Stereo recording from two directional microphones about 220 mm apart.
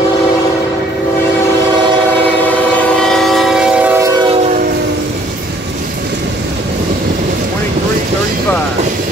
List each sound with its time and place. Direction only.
3.0 s train: centre (ahead or behind)